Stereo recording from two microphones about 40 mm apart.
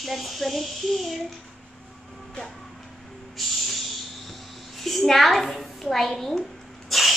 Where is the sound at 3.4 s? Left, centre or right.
Centre.